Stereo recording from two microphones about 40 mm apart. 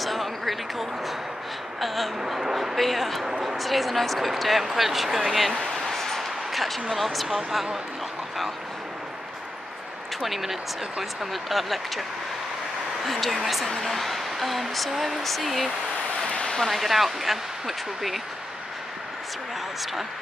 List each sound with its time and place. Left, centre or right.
0.0 s a sound: centre
1.8 s speech: centre
3.3 s speech: centre
3.5 s speech: centre
5.8 s a sound: centre
10.2 s speech: centre
13.0 s speech: centre